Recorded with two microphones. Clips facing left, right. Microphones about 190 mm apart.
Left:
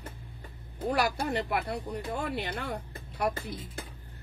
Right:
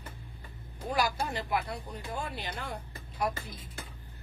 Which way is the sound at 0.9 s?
65° left (ahead or behind).